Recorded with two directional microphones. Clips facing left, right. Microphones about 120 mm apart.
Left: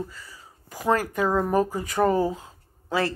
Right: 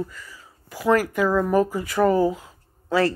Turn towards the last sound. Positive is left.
turn(degrees=20)  # may be behind; listen again after turning